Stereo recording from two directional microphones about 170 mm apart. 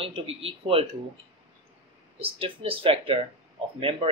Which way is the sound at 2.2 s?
30° right (ahead or behind).